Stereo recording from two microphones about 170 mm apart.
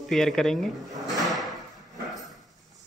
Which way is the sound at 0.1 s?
Centre (ahead or behind).